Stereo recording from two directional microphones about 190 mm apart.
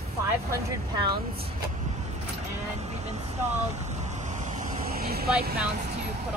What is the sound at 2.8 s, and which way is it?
Vehicle, 35° right (ahead or behind).